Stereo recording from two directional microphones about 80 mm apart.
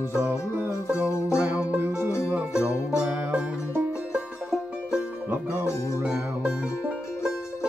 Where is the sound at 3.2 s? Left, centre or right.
Right.